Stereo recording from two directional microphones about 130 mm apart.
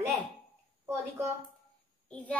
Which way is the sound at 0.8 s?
20° right (ahead or behind).